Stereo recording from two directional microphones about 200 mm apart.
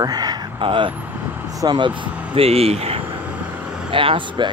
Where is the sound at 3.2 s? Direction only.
10° right (ahead or behind).